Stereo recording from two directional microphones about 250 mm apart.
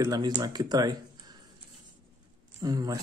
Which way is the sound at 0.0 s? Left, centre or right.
Centre.